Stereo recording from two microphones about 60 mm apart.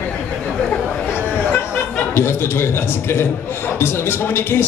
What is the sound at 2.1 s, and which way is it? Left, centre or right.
A man's voice, left.